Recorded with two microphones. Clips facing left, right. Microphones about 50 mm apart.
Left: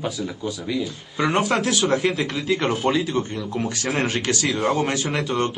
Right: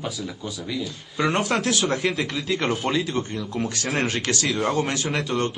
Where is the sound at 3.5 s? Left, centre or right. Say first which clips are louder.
Left 1 dB; left.